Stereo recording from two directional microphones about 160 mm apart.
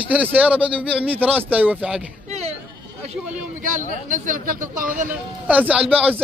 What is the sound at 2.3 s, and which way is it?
Sheep, 40° right (ahead or behind).